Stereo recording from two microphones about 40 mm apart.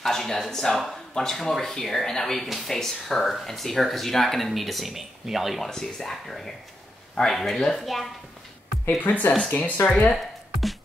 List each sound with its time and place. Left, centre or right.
0.0 s a sound: centre
0.5 s speech: centre
5.7 s speech: centre
9.0 s speech: left
9.5 s speech: left
10.1 s music: centre